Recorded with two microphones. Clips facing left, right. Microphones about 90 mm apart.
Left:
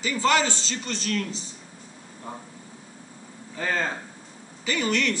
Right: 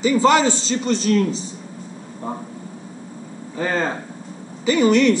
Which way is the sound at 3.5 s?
25° right (ahead or behind).